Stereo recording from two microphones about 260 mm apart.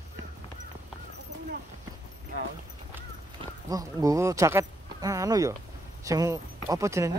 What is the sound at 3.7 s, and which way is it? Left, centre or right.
Speech, centre.